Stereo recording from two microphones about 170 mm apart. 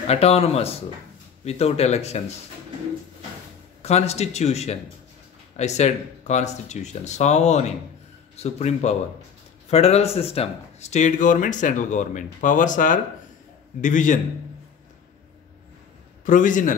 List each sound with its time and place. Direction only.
0.0 s speech: 35° left (ahead or behind)
3.8 s speech: 40° left (ahead or behind)
16.3 s speech: 50° left (ahead or behind)